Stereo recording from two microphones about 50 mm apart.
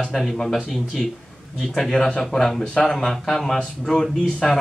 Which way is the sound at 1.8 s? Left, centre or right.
Centre.